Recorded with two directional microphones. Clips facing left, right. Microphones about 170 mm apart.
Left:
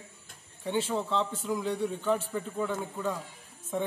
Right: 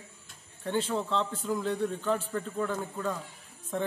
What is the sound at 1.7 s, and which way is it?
A man's voice, 5° left (ahead or behind).